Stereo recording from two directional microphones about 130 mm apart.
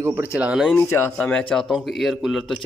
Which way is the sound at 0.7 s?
20° left (ahead or behind).